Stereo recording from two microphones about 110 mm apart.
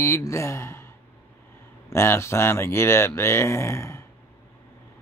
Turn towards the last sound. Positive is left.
turn(degrees=25)  # may be behind; listen again after turning